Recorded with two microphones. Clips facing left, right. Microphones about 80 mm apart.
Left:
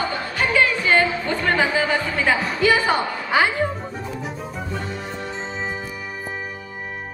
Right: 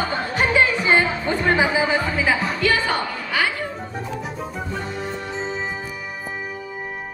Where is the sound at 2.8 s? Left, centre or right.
Left.